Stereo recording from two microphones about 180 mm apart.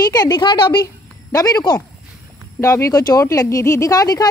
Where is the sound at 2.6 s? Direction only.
15° left (ahead or behind).